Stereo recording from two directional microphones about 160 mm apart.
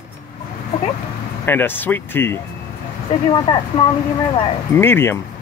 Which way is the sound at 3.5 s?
30° left (ahead or behind).